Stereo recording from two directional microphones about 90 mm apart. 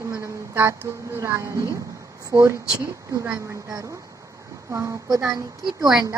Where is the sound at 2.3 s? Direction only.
70° right (ahead or behind).